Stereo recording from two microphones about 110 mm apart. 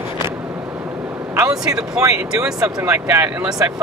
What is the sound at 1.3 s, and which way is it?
Speech, 30° right (ahead or behind).